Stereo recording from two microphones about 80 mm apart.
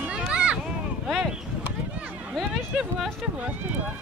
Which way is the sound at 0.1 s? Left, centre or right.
Centre.